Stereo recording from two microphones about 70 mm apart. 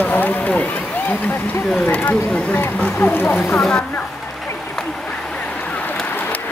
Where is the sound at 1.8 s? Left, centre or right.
Left.